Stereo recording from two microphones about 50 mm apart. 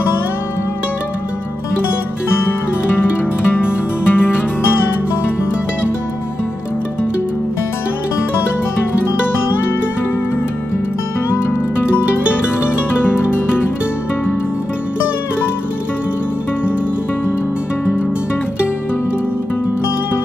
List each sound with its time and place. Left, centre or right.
3.5 s music: left